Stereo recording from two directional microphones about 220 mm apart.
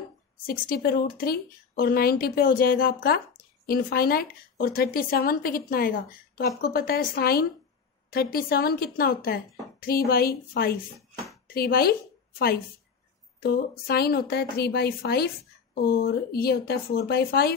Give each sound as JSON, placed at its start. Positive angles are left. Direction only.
{"t": 0.5, "sound": "a woman's voice", "side_deg": 45}
{"t": 13.4, "sound": "a woman's voice", "side_deg": 45}